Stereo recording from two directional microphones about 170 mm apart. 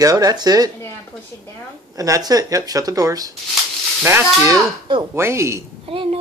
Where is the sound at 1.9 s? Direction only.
20° right (ahead or behind).